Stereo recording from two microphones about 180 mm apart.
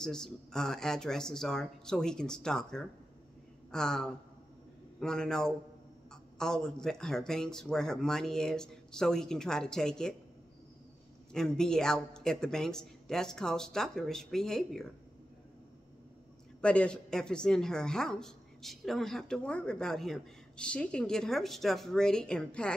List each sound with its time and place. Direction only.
0.0 s a woman's voice: 5° left (ahead or behind)
11.3 s a woman's voice: 5° left (ahead or behind)
16.6 s a woman's voice: 5° left (ahead or behind)